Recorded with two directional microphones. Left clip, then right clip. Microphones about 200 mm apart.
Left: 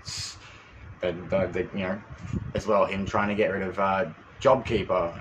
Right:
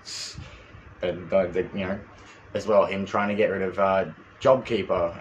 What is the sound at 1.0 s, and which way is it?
Speech, centre (ahead or behind).